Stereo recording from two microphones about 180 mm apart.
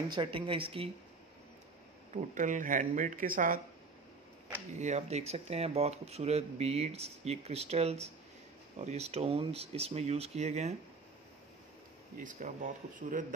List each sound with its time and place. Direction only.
0.1 s speech: 25° right (ahead or behind)
2.1 s speech: 45° right (ahead or behind)
4.7 s speech: 40° right (ahead or behind)
12.2 s speech: 45° right (ahead or behind)